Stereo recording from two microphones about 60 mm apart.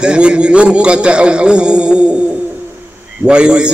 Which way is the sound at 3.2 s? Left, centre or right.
Centre.